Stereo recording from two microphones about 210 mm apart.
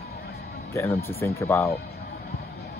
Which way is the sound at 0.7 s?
15° left (ahead or behind).